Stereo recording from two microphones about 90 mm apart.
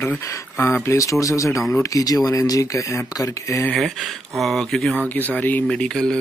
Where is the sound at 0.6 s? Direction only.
25° left (ahead or behind).